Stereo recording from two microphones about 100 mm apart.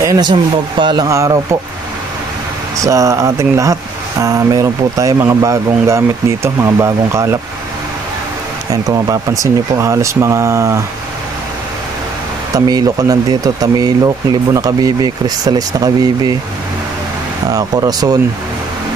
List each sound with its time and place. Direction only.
0.0 s speech: 35° right (ahead or behind)
0.3 s speech: 50° right (ahead or behind)
1.0 s speech: 30° right (ahead or behind)
2.8 s speech: 30° right (ahead or behind)
8.8 s speech: 35° right (ahead or behind)
12.5 s speech: 40° right (ahead or behind)
17.5 s speech: 35° right (ahead or behind)